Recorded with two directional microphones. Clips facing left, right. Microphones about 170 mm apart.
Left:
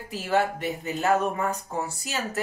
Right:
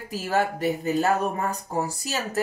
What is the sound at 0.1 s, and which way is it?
Speech, 40° right (ahead or behind).